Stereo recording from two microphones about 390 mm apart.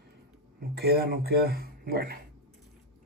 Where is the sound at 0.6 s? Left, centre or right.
Right.